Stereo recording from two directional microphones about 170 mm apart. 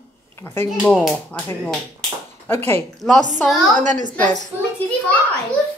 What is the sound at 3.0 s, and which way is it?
Speech, 5° left (ahead or behind).